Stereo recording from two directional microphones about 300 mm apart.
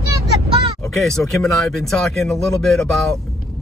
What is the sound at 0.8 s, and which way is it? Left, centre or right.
Speech, centre.